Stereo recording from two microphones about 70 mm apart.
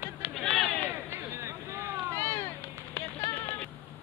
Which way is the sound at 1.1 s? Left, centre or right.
Right.